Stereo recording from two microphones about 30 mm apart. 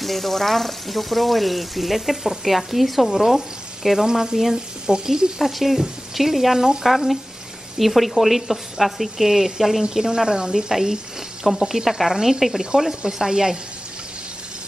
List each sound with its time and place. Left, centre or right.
0.0 s speech: centre
3.2 s frying: centre
4.0 s a woman's voice: centre
4.8 s a woman's voice: right
5.4 s speech: centre
7.8 s a woman's voice: centre